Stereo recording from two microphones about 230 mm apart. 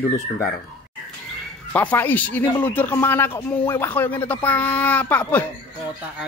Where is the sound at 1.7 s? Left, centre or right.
Centre.